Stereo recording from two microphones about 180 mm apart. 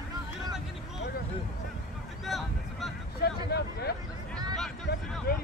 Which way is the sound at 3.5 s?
60° left (ahead or behind).